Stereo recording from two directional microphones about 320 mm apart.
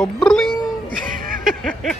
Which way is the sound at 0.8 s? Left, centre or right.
Right.